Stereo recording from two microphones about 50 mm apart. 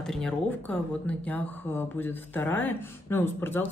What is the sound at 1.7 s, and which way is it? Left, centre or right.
Speech, left.